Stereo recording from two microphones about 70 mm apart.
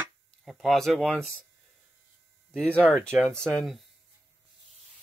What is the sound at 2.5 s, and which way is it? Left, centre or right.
Speech, centre.